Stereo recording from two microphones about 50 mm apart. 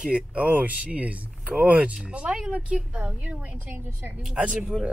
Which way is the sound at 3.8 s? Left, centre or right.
Right.